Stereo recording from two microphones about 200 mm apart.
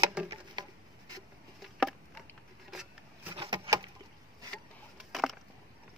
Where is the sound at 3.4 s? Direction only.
25° right (ahead or behind).